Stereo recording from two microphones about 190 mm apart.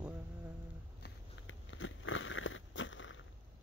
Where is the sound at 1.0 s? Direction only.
80° left.